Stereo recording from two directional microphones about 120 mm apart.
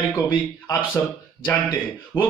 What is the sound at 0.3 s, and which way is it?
Speech, 45° left (ahead or behind).